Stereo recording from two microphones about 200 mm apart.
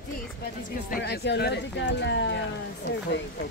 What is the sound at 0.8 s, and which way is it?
Speech, 50° left (ahead or behind).